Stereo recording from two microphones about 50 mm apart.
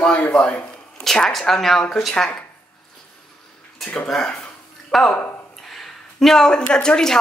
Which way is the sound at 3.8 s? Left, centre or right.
Centre.